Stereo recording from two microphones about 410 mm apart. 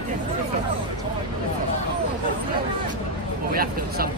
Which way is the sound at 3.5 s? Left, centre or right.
Right.